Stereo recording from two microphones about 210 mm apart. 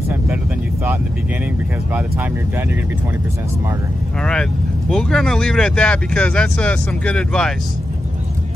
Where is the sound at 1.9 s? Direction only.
10° right (ahead or behind).